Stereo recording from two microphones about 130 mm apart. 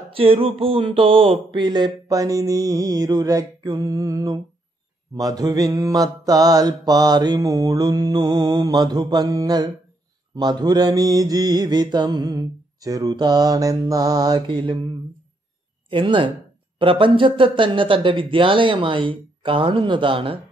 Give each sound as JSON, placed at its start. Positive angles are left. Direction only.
{"t": 0.1, "sound": "mantra", "side_deg": -45}
{"t": 15.9, "sound": "mantra", "side_deg": -40}